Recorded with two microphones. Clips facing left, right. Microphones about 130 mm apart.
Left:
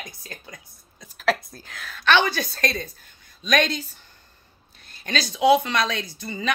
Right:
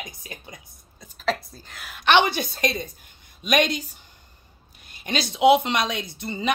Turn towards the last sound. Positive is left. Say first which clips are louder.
# right 2 dB
turn(degrees=-25)  # may be behind; listen again after turning